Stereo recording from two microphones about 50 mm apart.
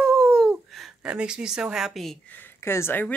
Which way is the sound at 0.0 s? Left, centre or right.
Centre.